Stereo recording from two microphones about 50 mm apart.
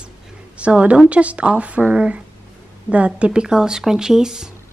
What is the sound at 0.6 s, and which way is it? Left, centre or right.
A woman's voice, right.